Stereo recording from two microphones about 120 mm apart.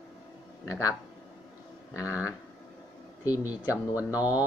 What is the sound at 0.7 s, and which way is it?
Speech, 25° left (ahead or behind).